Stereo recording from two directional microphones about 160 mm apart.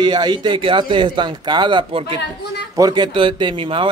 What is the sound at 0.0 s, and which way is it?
Speech, 25° right (ahead or behind).